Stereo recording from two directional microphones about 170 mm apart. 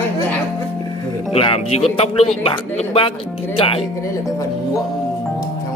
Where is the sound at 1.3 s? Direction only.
35° left (ahead or behind).